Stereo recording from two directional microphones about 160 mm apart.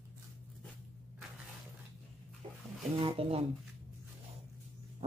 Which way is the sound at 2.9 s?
35° right (ahead or behind).